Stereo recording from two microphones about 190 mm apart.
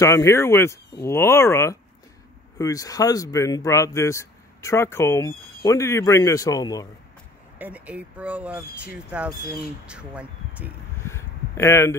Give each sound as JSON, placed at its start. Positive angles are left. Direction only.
{"t": 0.0, "sound": "speech", "side_deg": 15}
{"t": 7.5, "sound": "speech", "side_deg": -10}
{"t": 11.0, "sound": "a sound", "side_deg": 15}